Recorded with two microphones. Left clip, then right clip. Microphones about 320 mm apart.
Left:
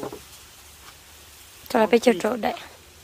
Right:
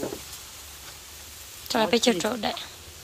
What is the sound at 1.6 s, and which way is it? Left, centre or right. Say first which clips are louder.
Speech: left 4 dB; centre.